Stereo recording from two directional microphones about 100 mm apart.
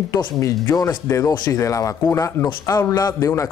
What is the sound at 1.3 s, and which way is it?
Speech, 45° left (ahead or behind).